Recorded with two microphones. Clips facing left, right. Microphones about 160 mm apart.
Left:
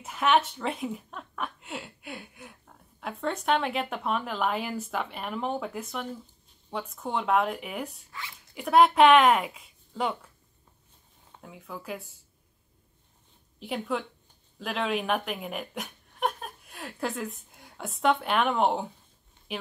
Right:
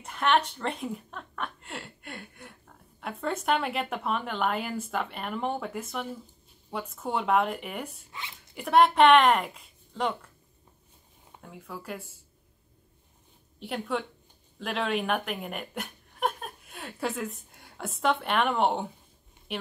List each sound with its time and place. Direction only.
0.0 s a sound: 5° left (ahead or behind)
3.0 s a woman's voice: centre (ahead or behind)
8.1 s speech: 20° right (ahead or behind)
8.5 s a woman's voice: centre (ahead or behind)
11.4 s a woman's voice: centre (ahead or behind)
13.6 s a woman's voice: centre (ahead or behind)